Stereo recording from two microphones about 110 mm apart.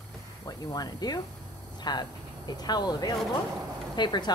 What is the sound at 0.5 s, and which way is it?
Speech, 35° left (ahead or behind).